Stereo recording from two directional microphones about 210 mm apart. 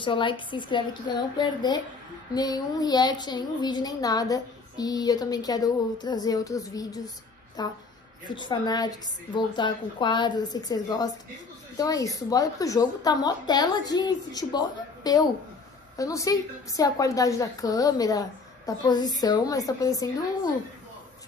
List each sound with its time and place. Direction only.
0.0 s a woman's voice: 25° left (ahead or behind)